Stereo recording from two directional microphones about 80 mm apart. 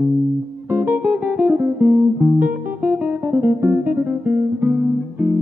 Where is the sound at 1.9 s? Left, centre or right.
Centre.